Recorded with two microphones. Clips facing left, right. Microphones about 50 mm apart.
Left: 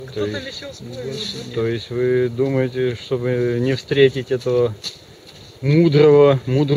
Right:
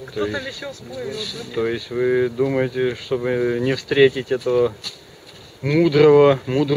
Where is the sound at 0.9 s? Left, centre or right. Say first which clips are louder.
Left 1 dB; centre.